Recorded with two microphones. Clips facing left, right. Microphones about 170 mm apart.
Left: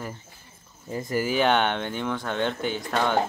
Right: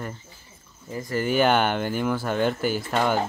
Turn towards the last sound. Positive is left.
turn(degrees=-5)  # may be behind; listen again after turning